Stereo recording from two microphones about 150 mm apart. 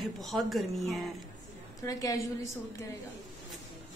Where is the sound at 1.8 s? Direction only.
20° left (ahead or behind).